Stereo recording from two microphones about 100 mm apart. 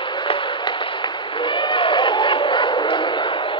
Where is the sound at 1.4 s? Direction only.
55° left (ahead or behind).